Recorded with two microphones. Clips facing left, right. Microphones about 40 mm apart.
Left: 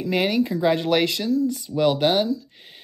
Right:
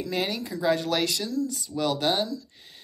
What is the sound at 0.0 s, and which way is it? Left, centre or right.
Speech, left.